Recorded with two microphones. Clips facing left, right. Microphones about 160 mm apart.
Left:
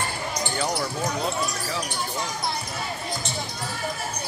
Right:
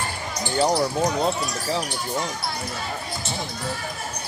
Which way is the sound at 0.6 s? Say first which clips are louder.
Right 9 dB; 35° right (ahead or behind).